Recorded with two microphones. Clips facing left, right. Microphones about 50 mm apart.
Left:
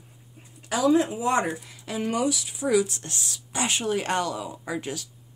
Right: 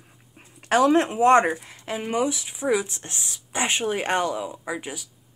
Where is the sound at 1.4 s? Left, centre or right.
Right.